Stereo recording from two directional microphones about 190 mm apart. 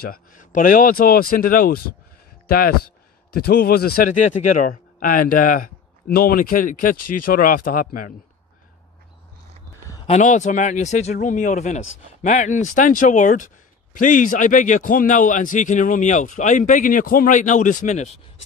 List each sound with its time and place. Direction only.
0.0 s a man's voice: 50° left (ahead or behind)
10.0 s a man's voice: 40° left (ahead or behind)